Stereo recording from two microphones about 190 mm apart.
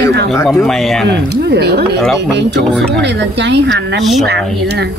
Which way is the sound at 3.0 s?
65° right (ahead or behind).